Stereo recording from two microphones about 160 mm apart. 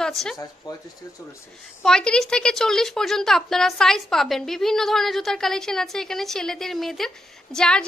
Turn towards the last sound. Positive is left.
turn(degrees=5)  # may be behind; listen again after turning